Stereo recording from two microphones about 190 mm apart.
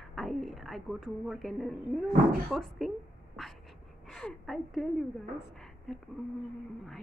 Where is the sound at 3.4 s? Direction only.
Centre (ahead or behind).